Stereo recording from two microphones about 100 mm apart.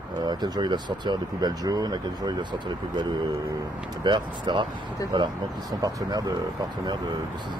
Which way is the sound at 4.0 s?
50° right (ahead or behind).